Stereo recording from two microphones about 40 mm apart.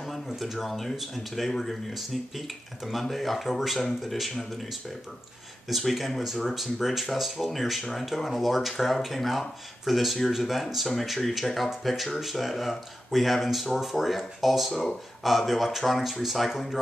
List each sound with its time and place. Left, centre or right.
0.3 s speech: centre
14.7 s speech: centre
15.2 s speech: centre